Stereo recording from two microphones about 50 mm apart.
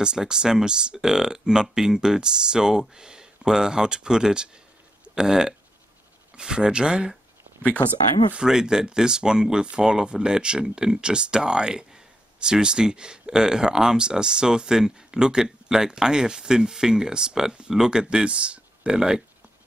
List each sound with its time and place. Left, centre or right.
0.0 s speech: centre
8.4 s speech: centre